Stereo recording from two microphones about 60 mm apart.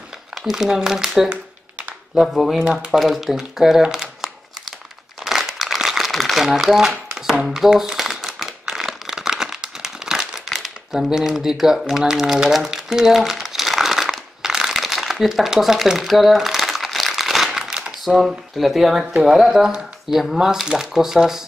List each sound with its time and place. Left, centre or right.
0.3 s speech: centre
1.3 s a sound: right
2.1 s speech: centre
2.6 s speech: centre
2.9 s crumpling: centre
10.5 s speech: centre
11.9 s crumpling: centre
18.0 s speech: centre